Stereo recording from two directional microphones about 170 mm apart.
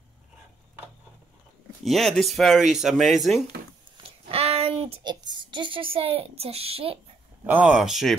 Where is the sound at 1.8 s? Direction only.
Centre (ahead or behind).